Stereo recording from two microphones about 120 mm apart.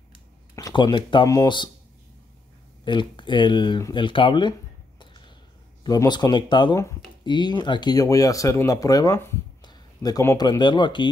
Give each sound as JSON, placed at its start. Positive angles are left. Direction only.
{"t": 0.6, "sound": "speech", "side_deg": 35}
{"t": 2.8, "sound": "speech", "side_deg": 40}
{"t": 3.9, "sound": "a sound", "side_deg": 45}
{"t": 5.9, "sound": "speech", "side_deg": 35}
{"t": 9.6, "sound": "a sound", "side_deg": 35}
{"t": 10.3, "sound": "speech", "side_deg": 35}